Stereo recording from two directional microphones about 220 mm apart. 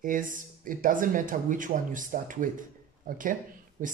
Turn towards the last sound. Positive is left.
turn(degrees=-35)  # may be behind; listen again after turning